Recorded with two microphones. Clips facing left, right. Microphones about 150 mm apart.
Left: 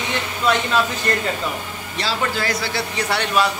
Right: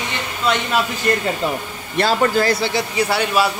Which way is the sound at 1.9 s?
50° right (ahead or behind).